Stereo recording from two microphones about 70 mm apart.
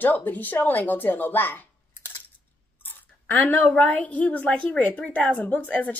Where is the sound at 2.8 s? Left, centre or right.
Left.